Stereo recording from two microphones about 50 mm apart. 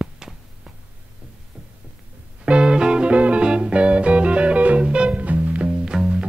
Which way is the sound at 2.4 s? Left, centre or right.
Centre.